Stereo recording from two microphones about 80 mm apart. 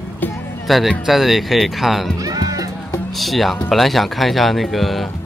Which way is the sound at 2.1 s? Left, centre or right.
Right.